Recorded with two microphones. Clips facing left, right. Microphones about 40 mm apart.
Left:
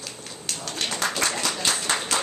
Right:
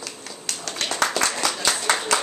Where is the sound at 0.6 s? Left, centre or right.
Right.